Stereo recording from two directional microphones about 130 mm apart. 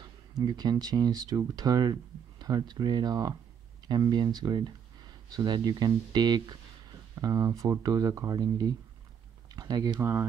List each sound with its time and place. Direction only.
0.4 s speech: 30° right (ahead or behind)